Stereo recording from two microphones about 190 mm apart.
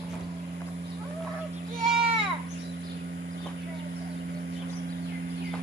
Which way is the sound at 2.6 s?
55° right (ahead or behind).